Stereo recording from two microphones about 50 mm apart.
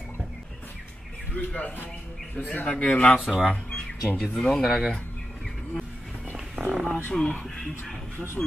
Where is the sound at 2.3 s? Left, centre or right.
Left.